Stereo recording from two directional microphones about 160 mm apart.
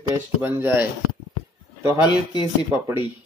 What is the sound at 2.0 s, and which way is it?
Speech, 30° left (ahead or behind).